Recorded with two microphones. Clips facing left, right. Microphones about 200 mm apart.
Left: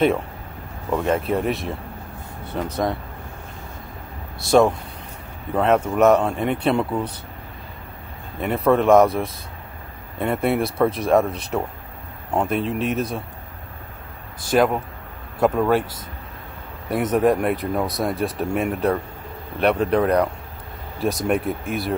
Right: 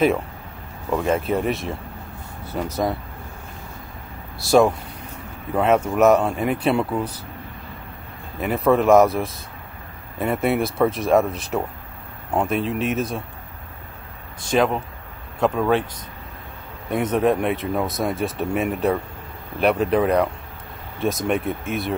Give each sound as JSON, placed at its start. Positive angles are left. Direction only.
{"t": 0.8, "sound": "speech", "side_deg": 0}
{"t": 4.5, "sound": "speech", "side_deg": -5}
{"t": 8.4, "sound": "speech", "side_deg": 0}
{"t": 10.1, "sound": "speech", "side_deg": 0}
{"t": 14.4, "sound": "speech", "side_deg": 0}
{"t": 16.9, "sound": "speech", "side_deg": 0}